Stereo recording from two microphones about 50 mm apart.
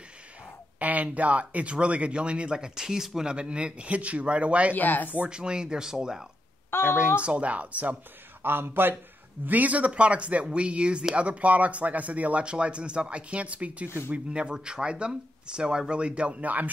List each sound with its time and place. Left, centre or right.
0.7 s speech: right
4.7 s speech: left
5.3 s speech: centre
6.7 s a woman's voice: left
7.2 s speech: right
8.4 s speech: right
9.5 s speech: right
13.8 s speech: left
14.1 s speech: right